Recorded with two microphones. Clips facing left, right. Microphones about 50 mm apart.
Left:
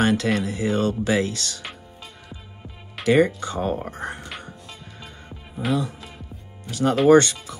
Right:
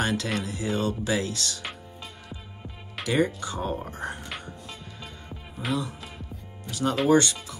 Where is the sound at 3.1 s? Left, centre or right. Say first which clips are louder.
Left 7 dB; left.